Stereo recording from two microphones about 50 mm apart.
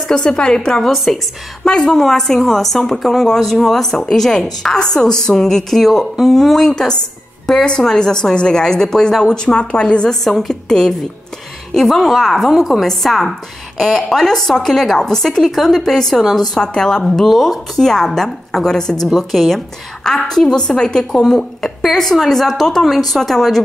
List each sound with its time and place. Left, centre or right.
0.1 s speech: centre
0.9 s a woman's voice: centre
1.6 s a woman's voice: centre
12.5 s a woman's voice: centre
12.8 s speech: centre
21.4 s a sound: centre
21.8 s a woman's voice: centre